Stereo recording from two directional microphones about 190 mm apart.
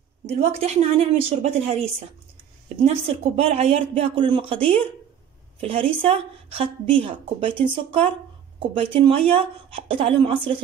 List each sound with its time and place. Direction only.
0.3 s a woman's voice: 35° right (ahead or behind)
5.6 s a woman's voice: 30° right (ahead or behind)